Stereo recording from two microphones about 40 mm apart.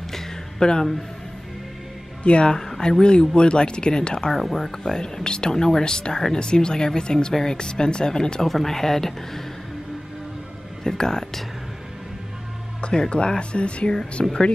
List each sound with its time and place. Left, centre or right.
0.1 s a sound: centre
2.2 s speech: left
4.3 s speech: centre
8.5 s speech: centre
10.8 s speech: centre
13.1 s speech: left
14.2 s speech: centre